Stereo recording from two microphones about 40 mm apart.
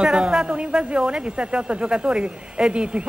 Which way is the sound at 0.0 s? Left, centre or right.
Right.